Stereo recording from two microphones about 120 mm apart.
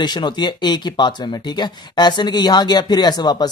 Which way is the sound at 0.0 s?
40° left (ahead or behind).